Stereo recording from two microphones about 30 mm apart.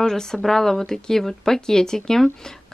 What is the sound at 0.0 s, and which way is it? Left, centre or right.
Speech, centre.